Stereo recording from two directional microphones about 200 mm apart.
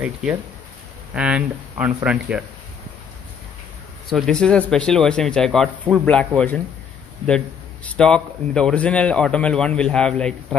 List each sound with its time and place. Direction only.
0.0 s a man's voice: 5° right (ahead or behind)
4.1 s a man's voice: 5° left (ahead or behind)